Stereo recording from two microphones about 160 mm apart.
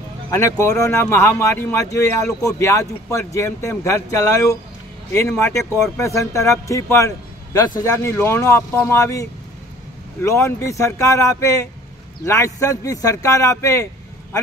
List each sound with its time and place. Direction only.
0.4 s speech: 20° left (ahead or behind)